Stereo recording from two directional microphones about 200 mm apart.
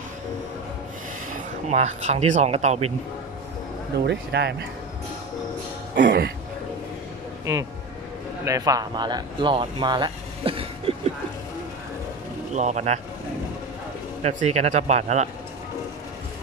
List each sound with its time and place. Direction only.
1.7 s speech: 35° right (ahead or behind)
4.0 s speech: 60° right (ahead or behind)
5.9 s speech: 60° right (ahead or behind)
8.5 s speech: 20° right (ahead or behind)
12.5 s speech: 35° right (ahead or behind)
14.2 s speech: 35° right (ahead or behind)